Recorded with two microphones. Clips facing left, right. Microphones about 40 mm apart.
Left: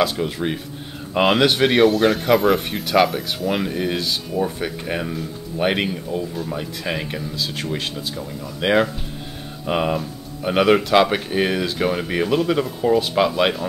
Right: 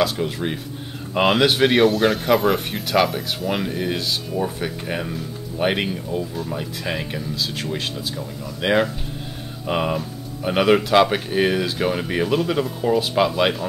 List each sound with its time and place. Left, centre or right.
0.0 s speech: centre